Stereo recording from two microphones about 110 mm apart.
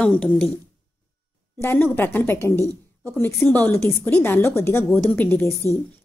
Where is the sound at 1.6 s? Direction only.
20° left (ahead or behind).